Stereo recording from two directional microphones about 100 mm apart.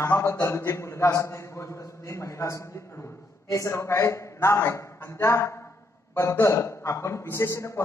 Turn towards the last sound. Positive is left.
turn(degrees=30)  # may be behind; listen again after turning